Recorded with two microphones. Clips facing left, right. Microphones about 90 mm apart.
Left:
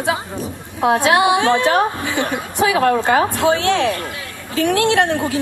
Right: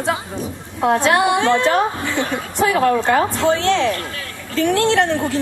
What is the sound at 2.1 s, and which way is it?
Speech, 15° left (ahead or behind).